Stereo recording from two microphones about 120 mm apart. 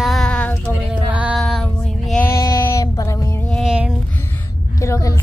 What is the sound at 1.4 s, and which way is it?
Female singing, 5° left (ahead or behind).